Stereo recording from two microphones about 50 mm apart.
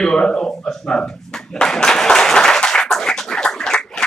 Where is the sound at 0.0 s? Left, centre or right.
Centre.